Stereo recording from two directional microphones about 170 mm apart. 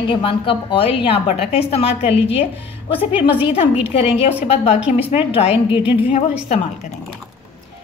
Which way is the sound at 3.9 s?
35° left (ahead or behind).